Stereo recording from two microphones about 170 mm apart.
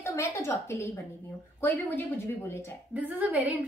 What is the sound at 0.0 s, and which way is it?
A woman's voice, 20° left (ahead or behind).